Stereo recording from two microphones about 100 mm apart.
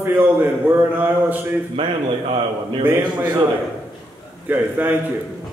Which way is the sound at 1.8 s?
60° right (ahead or behind).